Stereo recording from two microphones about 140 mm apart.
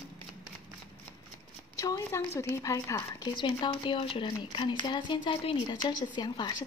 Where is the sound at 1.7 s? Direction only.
25° left (ahead or behind).